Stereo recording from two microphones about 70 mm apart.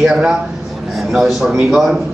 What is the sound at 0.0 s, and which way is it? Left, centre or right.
A man's voice, centre.